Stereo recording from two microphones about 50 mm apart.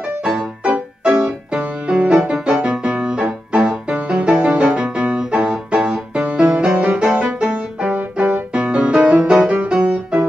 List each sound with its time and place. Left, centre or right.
1.0 s music: centre
2.2 s music: centre
7.9 s music: right
8.6 s music: centre